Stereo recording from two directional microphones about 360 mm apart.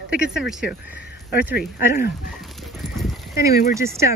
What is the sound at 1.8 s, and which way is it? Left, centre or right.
Speech, centre.